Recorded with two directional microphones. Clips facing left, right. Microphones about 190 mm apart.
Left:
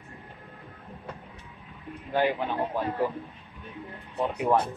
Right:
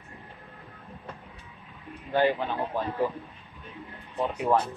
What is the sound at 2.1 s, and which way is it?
Speech, 10° left (ahead or behind).